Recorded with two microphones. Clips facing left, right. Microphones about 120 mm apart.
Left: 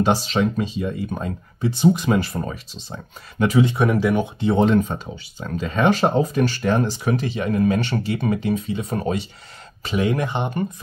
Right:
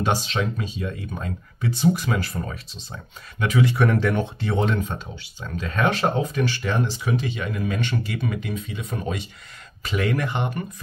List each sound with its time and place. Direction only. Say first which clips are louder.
0.3 s speech: left 6 dB; 30° left (ahead or behind)
5.4 s speech: left 3 dB; 30° left (ahead or behind)
9.8 s speech: left 3 dB; 20° left (ahead or behind)